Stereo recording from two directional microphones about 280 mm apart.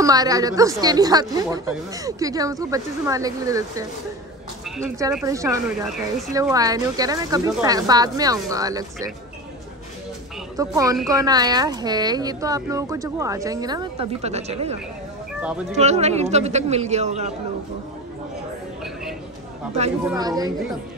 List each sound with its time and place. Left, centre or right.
0.0 s speech: centre
4.8 s speech: centre
10.6 s speech: centre
20.1 s speech: centre